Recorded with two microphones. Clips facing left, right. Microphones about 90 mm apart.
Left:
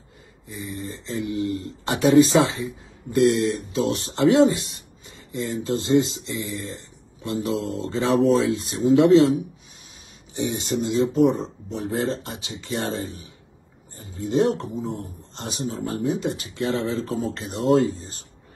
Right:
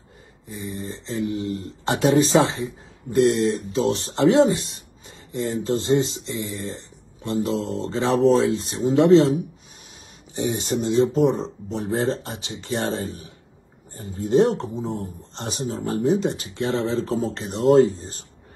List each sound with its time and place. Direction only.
0.7 s speech: 35° right (ahead or behind)
4.3 s speech: 25° right (ahead or behind)
5.3 s speech: 35° right (ahead or behind)
8.5 s speech: 30° right (ahead or behind)
10.3 s speech: 35° right (ahead or behind)